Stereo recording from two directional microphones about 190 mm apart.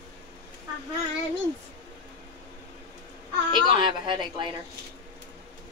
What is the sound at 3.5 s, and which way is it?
Speech, 25° right (ahead or behind).